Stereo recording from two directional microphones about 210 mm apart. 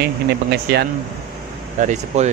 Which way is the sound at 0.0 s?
50° right (ahead or behind).